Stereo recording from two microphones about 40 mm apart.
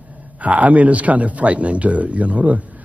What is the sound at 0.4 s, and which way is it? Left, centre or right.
A man's voice, right.